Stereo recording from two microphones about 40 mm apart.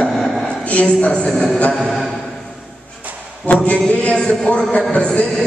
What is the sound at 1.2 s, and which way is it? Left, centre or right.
Speech, centre.